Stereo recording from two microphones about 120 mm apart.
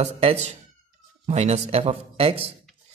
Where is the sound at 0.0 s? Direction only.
65° right (ahead or behind).